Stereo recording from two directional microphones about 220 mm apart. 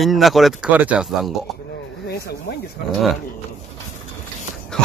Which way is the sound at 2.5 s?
45° left (ahead or behind).